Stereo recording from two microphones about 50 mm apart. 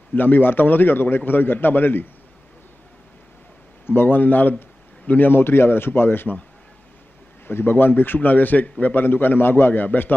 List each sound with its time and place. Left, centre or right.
0.1 s a man's voice: left
3.8 s a man's voice: left
4.2 s a man's voice: left
7.4 s a man's voice: left